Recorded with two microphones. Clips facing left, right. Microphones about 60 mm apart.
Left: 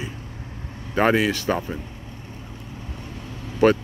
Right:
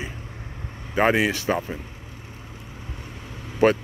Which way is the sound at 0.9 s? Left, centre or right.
Centre.